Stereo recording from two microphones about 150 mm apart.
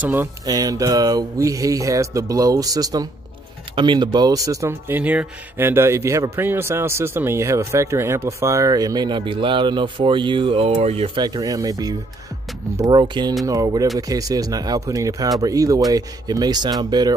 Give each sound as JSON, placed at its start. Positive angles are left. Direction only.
{"t": 0.0, "sound": "speech", "side_deg": -15}
{"t": 0.5, "sound": "speech", "side_deg": -25}
{"t": 11.2, "sound": "speech", "side_deg": -25}